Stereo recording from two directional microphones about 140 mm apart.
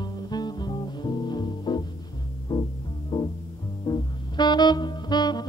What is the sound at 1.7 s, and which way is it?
Music, 30° left (ahead or behind).